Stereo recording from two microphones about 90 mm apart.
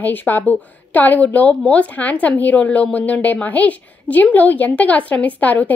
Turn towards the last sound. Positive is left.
turn(degrees=20)  # may be behind; listen again after turning